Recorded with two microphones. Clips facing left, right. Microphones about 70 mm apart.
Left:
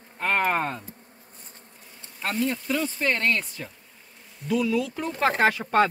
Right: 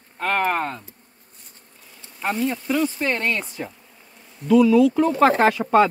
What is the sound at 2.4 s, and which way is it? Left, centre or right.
Speech, centre.